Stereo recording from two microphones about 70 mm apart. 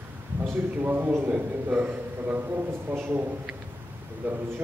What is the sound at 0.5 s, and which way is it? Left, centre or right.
A man's voice, right.